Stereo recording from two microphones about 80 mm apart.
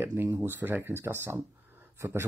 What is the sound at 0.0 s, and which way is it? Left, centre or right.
Speech, right.